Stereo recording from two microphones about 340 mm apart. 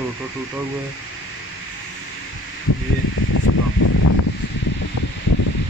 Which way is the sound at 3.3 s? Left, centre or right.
Left.